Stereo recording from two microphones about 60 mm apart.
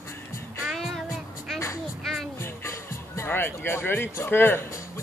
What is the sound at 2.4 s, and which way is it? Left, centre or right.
Music, left.